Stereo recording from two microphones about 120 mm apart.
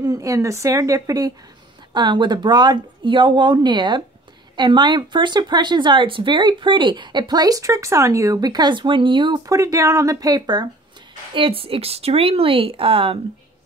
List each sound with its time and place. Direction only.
0.0 s speech: 30° right (ahead or behind)
9.5 s speech: 25° right (ahead or behind)
11.3 s speech: 50° right (ahead or behind)